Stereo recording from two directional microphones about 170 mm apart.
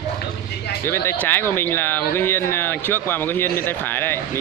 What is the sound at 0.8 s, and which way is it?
Speech, 15° left (ahead or behind).